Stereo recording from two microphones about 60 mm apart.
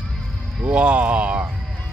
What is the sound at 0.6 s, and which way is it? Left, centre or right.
Music, centre.